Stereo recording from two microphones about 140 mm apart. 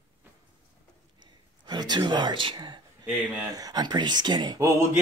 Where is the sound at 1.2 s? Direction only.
30° right (ahead or behind).